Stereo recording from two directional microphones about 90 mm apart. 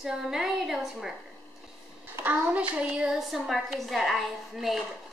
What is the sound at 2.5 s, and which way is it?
Speech, 15° right (ahead or behind).